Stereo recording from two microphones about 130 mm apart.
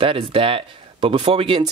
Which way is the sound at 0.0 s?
45° right (ahead or behind).